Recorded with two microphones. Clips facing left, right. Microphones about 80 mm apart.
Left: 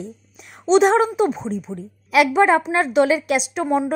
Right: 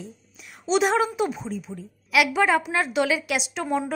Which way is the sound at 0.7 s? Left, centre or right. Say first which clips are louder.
Left 7 dB; left.